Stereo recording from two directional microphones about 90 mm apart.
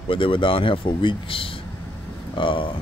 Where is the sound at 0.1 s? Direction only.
75° left (ahead or behind).